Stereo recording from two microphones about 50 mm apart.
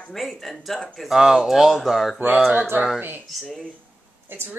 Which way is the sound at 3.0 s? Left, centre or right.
Right.